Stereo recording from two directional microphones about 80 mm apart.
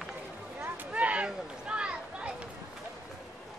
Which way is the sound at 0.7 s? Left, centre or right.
Centre.